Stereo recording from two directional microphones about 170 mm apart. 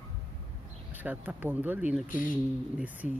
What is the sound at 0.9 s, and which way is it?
Speech, 10° right (ahead or behind).